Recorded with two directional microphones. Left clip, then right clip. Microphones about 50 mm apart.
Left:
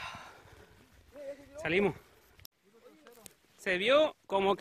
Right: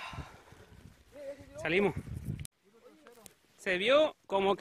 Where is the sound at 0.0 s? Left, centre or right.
Centre.